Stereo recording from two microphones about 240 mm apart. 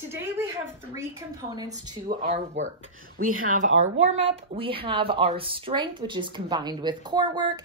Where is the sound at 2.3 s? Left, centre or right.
Right.